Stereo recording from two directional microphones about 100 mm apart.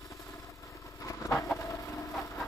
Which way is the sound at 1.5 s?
30° left (ahead or behind).